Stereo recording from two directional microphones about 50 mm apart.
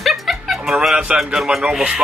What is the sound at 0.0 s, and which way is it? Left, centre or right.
Music, centre.